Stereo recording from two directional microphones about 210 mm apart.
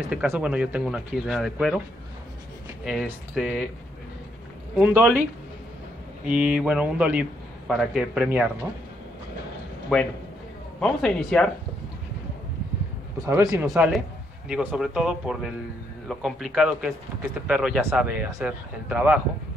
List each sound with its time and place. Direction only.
0.1 s a man's voice: 5° right (ahead or behind)
2.8 s a man's voice: centre (ahead or behind)
4.7 s speech: 10° right (ahead or behind)
6.2 s a man's voice: 5° right (ahead or behind)
9.9 s a man's voice: 5° left (ahead or behind)
13.3 s speech: 15° right (ahead or behind)
13.7 s a man's voice: centre (ahead or behind)